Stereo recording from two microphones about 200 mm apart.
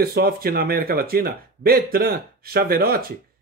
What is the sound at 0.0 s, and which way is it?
Speech, 50° right (ahead or behind).